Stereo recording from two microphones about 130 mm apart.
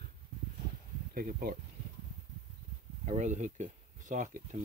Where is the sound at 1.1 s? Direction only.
90° right.